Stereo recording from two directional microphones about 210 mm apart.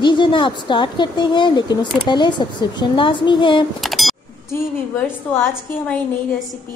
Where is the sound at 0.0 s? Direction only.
20° left (ahead or behind).